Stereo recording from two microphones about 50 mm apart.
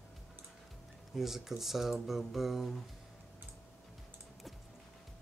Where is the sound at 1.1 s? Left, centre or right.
Centre.